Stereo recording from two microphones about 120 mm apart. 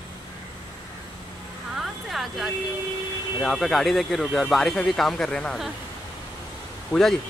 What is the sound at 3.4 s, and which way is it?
Speech, centre (ahead or behind).